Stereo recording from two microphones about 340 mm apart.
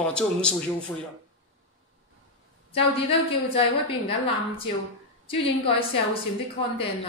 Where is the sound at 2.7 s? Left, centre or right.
Centre.